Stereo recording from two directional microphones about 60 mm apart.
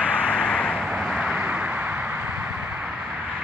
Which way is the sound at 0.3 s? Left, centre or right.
Centre.